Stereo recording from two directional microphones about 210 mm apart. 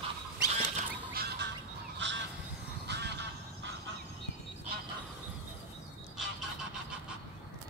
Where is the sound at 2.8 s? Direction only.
55° right (ahead or behind).